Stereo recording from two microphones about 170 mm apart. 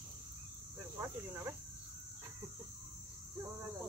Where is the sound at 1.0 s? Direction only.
15° right (ahead or behind).